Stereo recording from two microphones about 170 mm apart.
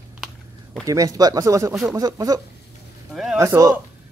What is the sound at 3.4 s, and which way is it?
Speech, 20° right (ahead or behind).